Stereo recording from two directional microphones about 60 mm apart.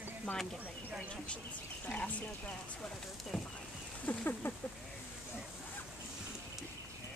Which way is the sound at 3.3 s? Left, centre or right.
Centre.